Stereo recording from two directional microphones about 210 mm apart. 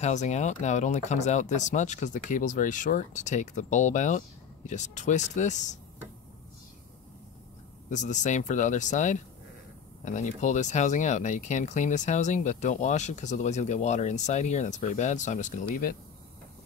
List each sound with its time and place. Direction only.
0.0 s speech: 35° left (ahead or behind)
7.9 s speech: 35° left (ahead or behind)